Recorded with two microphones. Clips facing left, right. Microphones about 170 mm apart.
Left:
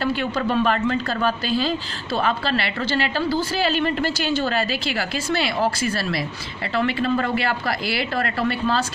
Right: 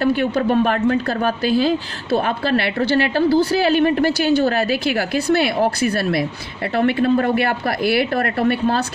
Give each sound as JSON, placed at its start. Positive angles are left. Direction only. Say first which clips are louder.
{"t": 0.0, "sound": "speech", "louder": "right 5 dB", "side_deg": -55}